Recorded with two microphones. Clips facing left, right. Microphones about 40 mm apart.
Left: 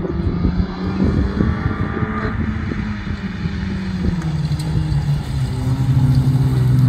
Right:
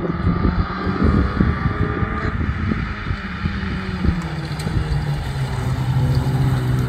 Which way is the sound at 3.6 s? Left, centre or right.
Centre.